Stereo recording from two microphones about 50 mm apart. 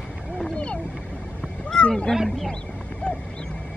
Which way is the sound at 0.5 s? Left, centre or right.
Left.